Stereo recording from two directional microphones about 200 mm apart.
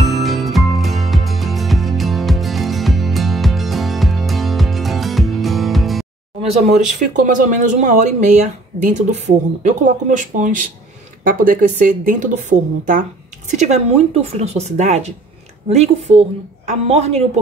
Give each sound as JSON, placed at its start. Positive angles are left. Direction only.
{"t": 0.0, "sound": "music", "side_deg": 0}
{"t": 6.4, "sound": "speech", "side_deg": -35}